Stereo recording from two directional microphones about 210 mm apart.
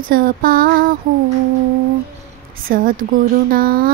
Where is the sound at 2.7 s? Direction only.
40° right (ahead or behind).